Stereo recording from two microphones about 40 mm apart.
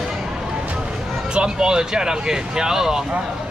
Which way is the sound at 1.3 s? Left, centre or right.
Right.